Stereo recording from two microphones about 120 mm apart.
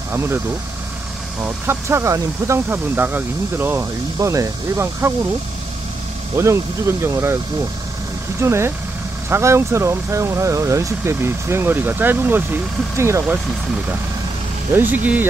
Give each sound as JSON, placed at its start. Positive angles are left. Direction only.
{"t": 0.1, "sound": "speech", "side_deg": -20}
{"t": 1.4, "sound": "speech", "side_deg": -20}
{"t": 6.3, "sound": "speech", "side_deg": -25}
{"t": 8.4, "sound": "speech", "side_deg": -20}
{"t": 14.7, "sound": "speech", "side_deg": -15}